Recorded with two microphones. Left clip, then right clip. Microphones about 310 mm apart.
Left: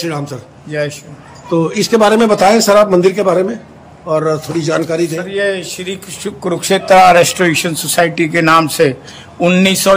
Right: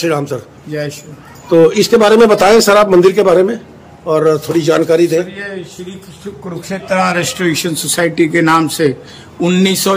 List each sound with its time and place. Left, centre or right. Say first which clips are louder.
0.0 s a man's voice: right 5 dB; centre
0.7 s a man's voice: left 3 dB; centre
5.1 s a man's voice: left 1 dB; left
7.2 s a man's voice: left 5 dB; centre